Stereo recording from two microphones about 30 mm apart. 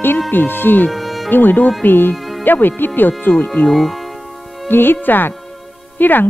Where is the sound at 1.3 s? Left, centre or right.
Left.